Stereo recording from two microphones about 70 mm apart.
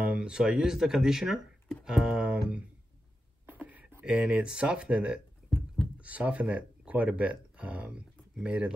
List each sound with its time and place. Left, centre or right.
0.0 s speech: centre
3.4 s a sound: right
4.0 s speech: centre